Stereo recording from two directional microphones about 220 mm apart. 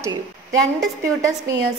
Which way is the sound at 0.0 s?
15° right (ahead or behind).